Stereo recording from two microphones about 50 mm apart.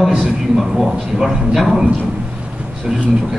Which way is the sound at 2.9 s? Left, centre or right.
Centre.